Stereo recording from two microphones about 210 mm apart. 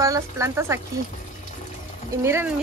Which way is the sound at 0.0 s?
15° right (ahead or behind).